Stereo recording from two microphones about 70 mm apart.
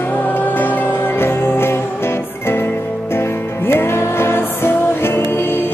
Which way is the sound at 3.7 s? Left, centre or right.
Left.